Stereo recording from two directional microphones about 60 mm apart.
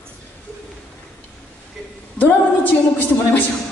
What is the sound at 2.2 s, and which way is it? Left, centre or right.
A capella, left.